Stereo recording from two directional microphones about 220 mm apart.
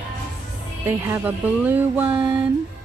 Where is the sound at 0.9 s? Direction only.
10° right (ahead or behind).